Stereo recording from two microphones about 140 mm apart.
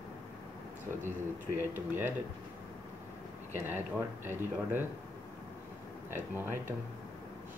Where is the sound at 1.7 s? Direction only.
15° right (ahead or behind).